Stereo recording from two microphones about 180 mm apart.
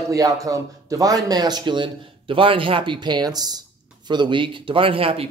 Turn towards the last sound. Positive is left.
turn(degrees=-30)  # may be behind; listen again after turning